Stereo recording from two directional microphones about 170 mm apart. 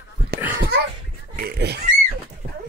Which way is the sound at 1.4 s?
70° right (ahead or behind).